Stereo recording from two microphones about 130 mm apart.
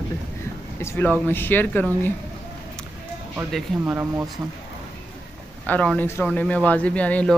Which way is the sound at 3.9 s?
15° right (ahead or behind).